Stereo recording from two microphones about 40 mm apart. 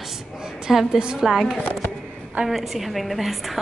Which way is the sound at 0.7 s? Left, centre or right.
Centre.